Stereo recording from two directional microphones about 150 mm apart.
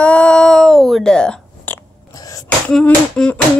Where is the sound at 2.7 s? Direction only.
5° left (ahead or behind).